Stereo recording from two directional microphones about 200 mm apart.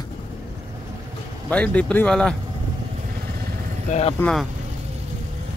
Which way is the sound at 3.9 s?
30° left (ahead or behind).